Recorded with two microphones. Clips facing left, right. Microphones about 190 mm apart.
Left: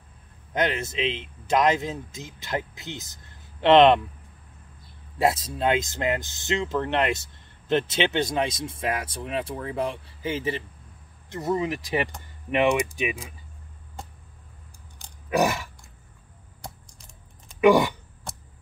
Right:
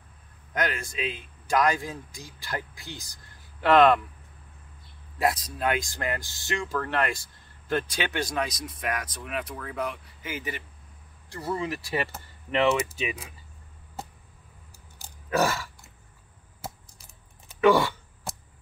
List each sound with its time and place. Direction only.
0.5 s speech: 25° left (ahead or behind)
5.2 s speech: 25° left (ahead or behind)
15.2 s chewing: 15° left (ahead or behind)
16.6 s typing: 5° right (ahead or behind)
17.6 s speech: 15° left (ahead or behind)